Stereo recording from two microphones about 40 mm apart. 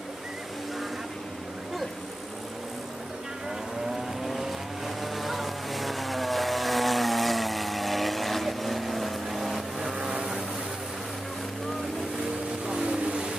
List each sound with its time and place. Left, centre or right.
4.3 s vehicle: centre
12.9 s vehicle: right